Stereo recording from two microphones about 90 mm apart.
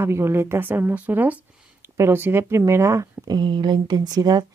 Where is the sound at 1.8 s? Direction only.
30° right (ahead or behind).